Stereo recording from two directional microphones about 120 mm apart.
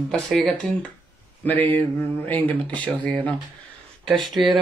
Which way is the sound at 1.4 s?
15° left (ahead or behind).